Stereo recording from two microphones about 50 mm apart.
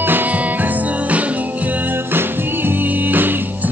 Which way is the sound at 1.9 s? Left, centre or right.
Right.